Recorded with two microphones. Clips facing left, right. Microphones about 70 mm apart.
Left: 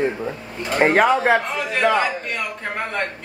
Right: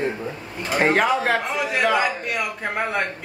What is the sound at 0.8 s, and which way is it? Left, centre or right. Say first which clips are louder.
Speech: left 3 dB; centre.